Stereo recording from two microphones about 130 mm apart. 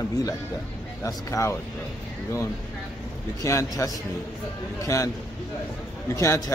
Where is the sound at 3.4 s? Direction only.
25° left (ahead or behind).